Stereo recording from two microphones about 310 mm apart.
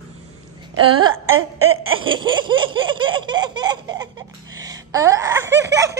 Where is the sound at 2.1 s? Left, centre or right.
Centre.